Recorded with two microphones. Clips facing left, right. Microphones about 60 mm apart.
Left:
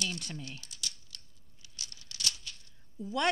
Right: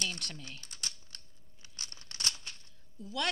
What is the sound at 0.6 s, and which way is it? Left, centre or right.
Typing, right.